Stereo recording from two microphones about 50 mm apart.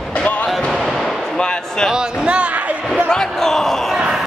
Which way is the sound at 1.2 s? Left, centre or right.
Centre.